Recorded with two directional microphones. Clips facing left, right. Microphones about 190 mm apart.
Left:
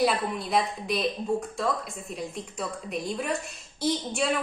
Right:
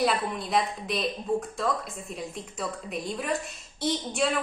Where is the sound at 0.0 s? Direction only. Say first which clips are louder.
Left 1 dB; centre (ahead or behind).